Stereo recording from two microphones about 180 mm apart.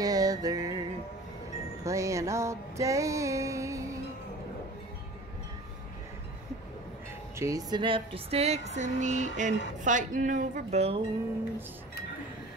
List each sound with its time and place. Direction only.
0.0 s music: 20° right (ahead or behind)
1.9 s music: 15° right (ahead or behind)
7.3 s speech: 20° right (ahead or behind); by 11.0 s 35° right (ahead or behind)